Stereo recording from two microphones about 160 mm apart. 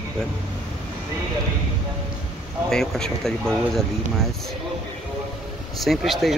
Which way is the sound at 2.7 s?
5° left (ahead or behind).